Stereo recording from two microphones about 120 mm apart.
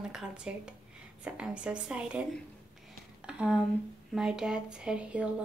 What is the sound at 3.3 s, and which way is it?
Speech, 10° right (ahead or behind).